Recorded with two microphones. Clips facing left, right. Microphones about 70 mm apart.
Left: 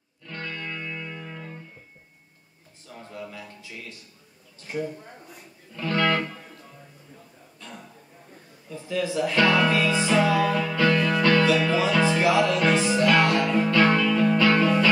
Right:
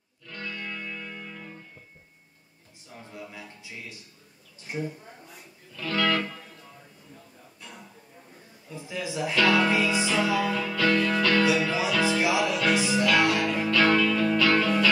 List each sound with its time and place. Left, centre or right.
0.3 s music: left
2.9 s a sound: centre
4.6 s speech: centre
5.8 s music: left
8.6 s a sound: centre
9.3 s music: left
12.3 s music: centre
12.5 s music: left